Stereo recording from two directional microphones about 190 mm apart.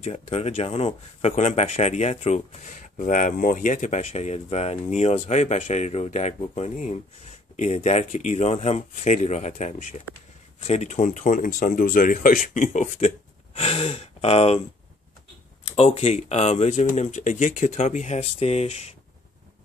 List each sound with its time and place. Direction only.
0.0 s speech: 35° left (ahead or behind)
15.6 s speech: 30° left (ahead or behind)